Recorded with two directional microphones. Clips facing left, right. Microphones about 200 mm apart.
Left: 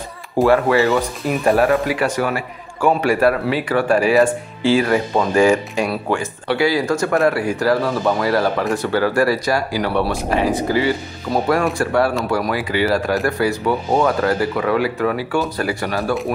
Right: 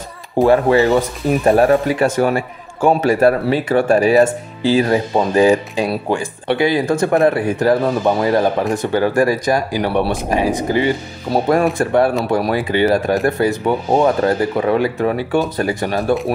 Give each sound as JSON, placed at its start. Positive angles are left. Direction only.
{"t": 0.5, "sound": "speech", "side_deg": -20}
{"t": 3.2, "sound": "speech", "side_deg": -40}
{"t": 4.8, "sound": "speech", "side_deg": -25}
{"t": 5.4, "sound": "speech", "side_deg": -35}
{"t": 6.4, "sound": "speech", "side_deg": -20}